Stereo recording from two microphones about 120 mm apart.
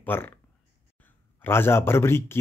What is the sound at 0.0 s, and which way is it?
Speech, 15° left (ahead or behind).